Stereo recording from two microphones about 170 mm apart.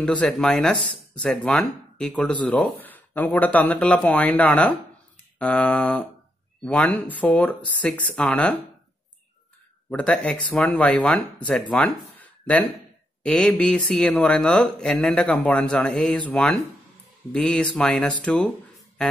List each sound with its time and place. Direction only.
0.0 s speech: 5° left (ahead or behind)
9.8 s speech: 5° left (ahead or behind)
11.7 s a sound: 5° left (ahead or behind)
13.2 s speech: 5° left (ahead or behind)